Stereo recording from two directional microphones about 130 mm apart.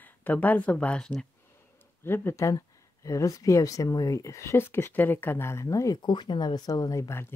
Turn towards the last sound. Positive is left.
turn(degrees=20)  # may be behind; listen again after turning